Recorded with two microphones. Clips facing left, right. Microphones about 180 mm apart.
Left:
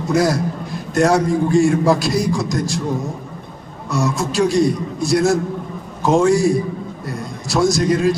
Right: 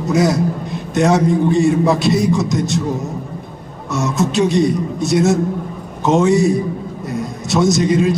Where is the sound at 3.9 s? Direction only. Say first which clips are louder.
Right 2 dB; centre (ahead or behind).